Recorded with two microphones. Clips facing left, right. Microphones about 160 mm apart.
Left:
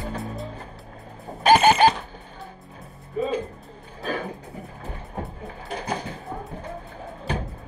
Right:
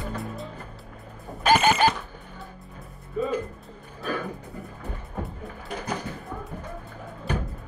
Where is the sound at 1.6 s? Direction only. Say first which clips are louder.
Left 4 dB; 20° left (ahead or behind).